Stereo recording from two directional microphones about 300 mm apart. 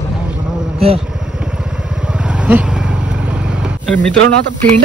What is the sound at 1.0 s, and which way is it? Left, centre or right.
Vehicle, centre.